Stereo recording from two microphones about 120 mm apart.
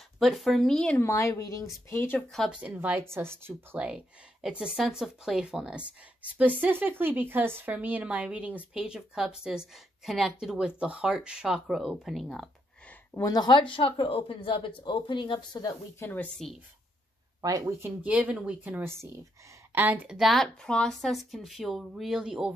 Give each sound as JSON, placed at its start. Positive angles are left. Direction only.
{"t": 0.2, "sound": "speech", "side_deg": 0}
{"t": 1.0, "sound": "speech", "side_deg": 25}
{"t": 2.3, "sound": "speech", "side_deg": 0}
{"t": 2.6, "sound": "speech", "side_deg": -15}
{"t": 3.8, "sound": "speech", "side_deg": -10}
{"t": 13.1, "sound": "speech", "side_deg": 30}
{"t": 16.0, "sound": "speech", "side_deg": 15}
{"t": 17.4, "sound": "speech", "side_deg": -25}
{"t": 18.0, "sound": "speech", "side_deg": -10}